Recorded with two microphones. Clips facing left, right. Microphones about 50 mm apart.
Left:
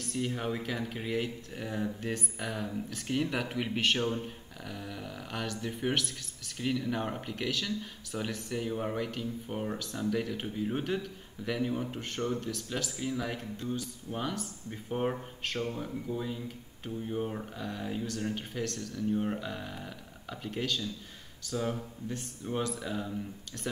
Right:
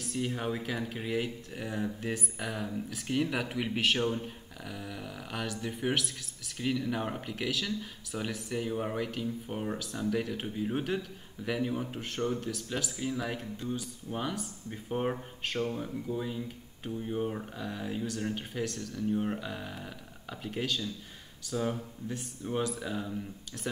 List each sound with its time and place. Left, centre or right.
0.0 s speech: centre